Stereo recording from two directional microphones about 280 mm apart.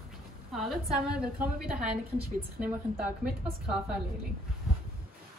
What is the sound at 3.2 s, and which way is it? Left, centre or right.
Speech, centre.